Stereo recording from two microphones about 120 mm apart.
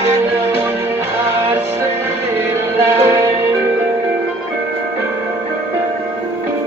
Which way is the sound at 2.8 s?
20° right (ahead or behind).